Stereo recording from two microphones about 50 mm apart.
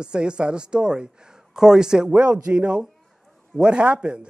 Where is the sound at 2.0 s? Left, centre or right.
Right.